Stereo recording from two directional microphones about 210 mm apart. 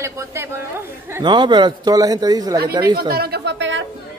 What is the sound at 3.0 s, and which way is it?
Speech, 50° right (ahead or behind).